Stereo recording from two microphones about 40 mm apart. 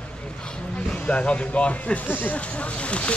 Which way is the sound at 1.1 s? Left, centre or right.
Left.